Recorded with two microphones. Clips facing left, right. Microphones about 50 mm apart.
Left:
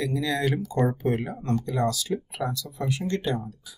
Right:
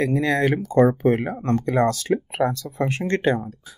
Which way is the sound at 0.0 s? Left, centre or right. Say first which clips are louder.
Right 6 dB; right.